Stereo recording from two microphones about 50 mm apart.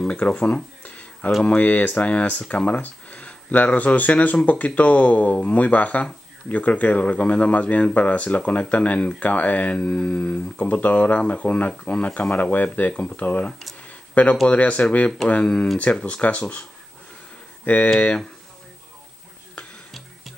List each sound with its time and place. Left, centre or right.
0.0 s speech: centre
0.8 s a sound: left
1.4 s speech: left
13.8 s a sound: left
14.5 s speech: left
17.6 s speech: left